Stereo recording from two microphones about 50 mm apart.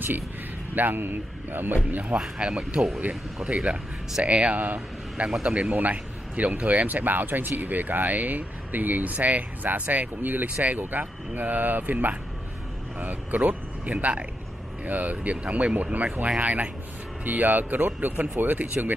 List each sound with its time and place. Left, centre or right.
0.7 s speech: right
1.9 s a man's voice: right
2.1 s a man's voice: centre; by 18.9 s right